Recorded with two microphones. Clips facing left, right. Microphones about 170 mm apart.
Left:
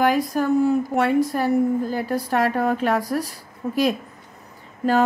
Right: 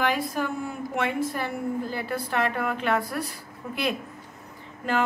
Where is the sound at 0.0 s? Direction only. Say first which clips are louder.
Left 6 dB; 40° left (ahead or behind).